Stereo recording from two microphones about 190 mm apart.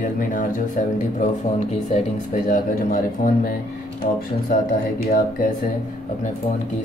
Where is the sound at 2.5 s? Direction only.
45° left (ahead or behind).